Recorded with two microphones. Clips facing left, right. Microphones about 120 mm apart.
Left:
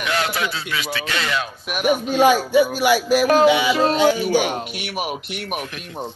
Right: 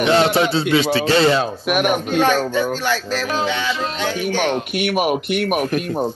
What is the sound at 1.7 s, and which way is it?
Speech, 55° right (ahead or behind).